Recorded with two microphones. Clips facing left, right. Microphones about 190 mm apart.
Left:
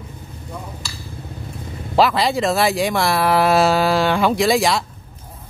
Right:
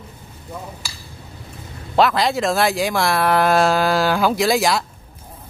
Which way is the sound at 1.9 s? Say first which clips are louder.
Even; centre (ahead or behind).